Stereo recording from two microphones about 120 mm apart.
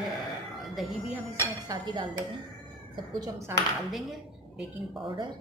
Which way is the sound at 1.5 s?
30° right (ahead or behind).